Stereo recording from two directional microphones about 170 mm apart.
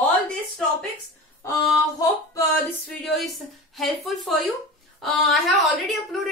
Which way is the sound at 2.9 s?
Centre (ahead or behind).